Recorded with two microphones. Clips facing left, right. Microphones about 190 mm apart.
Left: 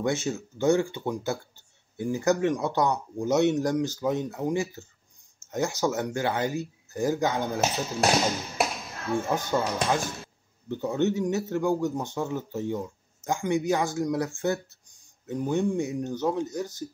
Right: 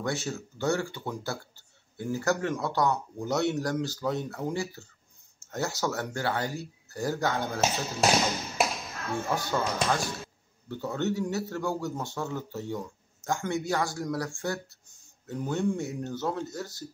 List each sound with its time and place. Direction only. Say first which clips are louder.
0.0 s a man's voice: left 4 dB; 20° left (ahead or behind)
8.0 s speech: left 1 dB; centre (ahead or behind)
9.3 s a man's voice: even; 20° left (ahead or behind)